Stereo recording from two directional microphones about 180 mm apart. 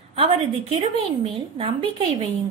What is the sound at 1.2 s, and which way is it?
Speech, 30° right (ahead or behind).